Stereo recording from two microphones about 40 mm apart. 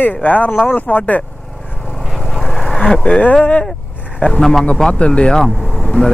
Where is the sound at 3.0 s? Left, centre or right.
Left.